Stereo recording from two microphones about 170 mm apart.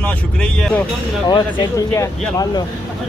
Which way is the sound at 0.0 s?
5° left (ahead or behind).